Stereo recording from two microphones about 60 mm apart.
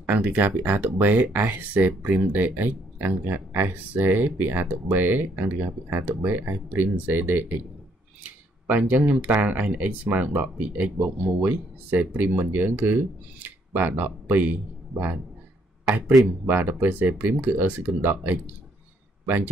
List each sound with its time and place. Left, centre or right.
0.0 s speech: right
16.4 s speech: right